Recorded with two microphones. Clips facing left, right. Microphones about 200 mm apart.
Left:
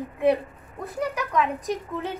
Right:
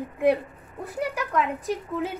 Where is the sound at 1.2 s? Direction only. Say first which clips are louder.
Left 1 dB; 15° left (ahead or behind).